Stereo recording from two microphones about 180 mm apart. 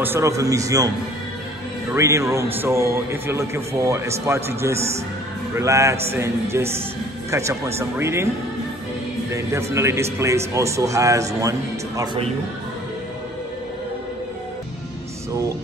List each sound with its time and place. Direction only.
0.0 s a man's voice: 15° right (ahead or behind)
2.0 s a man's voice: 15° right (ahead or behind)
9.3 s a man's voice: 15° right (ahead or behind)